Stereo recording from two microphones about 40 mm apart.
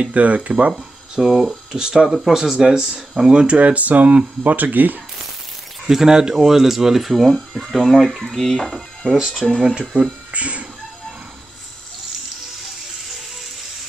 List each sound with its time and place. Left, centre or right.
0.0 s speech: right
0.7 s speech: centre
3.5 s speech: right
5.9 s speech: centre
8.7 s speech: centre
9.9 s speech: right